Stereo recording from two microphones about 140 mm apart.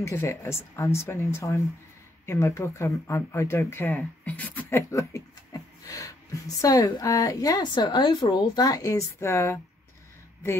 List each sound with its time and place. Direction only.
0.0 s a woman's voice: 20° left (ahead or behind)